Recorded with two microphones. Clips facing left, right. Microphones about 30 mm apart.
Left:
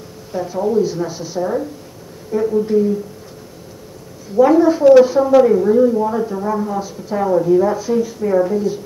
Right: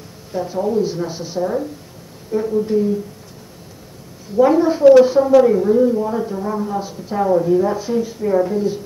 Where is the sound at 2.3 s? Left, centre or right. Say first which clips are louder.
Left 2 dB; centre.